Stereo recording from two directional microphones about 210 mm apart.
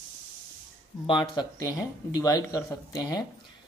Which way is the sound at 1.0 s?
20° left (ahead or behind).